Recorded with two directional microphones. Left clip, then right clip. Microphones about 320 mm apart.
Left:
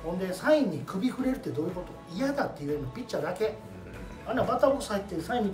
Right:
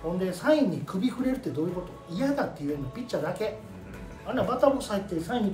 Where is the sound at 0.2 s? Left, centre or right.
Centre.